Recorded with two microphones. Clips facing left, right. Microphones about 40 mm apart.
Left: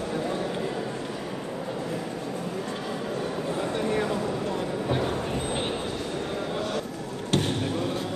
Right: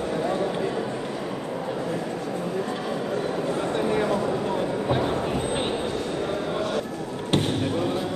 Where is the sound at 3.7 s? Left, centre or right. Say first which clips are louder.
Right 3 dB; centre.